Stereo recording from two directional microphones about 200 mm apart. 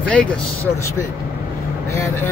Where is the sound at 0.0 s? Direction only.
5° left (ahead or behind).